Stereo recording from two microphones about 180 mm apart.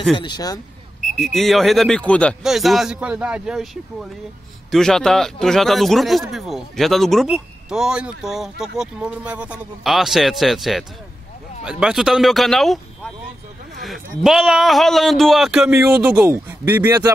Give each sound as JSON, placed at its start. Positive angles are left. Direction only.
{"t": 0.1, "sound": "speech", "side_deg": 25}
{"t": 1.0, "sound": "speech", "side_deg": 0}